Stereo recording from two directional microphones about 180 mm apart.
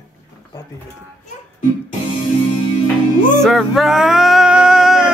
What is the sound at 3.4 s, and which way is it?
Music, centre (ahead or behind).